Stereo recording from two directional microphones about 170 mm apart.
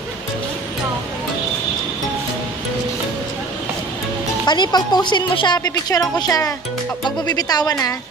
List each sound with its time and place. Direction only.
4.5 s speech: 25° left (ahead or behind)